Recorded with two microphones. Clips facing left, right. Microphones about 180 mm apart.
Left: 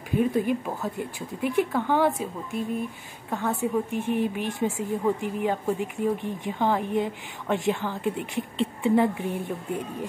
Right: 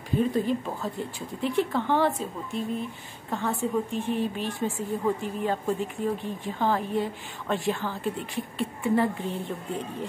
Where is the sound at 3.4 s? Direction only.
15° left (ahead or behind).